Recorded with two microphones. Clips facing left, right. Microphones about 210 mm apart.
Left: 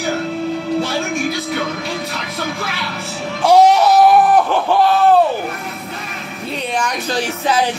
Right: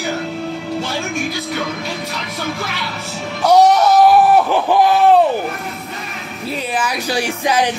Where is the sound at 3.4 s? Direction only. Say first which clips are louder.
Left 1 dB; 10° left (ahead or behind).